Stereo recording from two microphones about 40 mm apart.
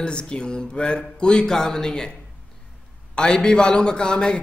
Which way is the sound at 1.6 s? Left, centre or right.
Centre.